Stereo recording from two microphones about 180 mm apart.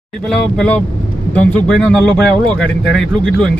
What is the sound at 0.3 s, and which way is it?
Speech, 5° left (ahead or behind).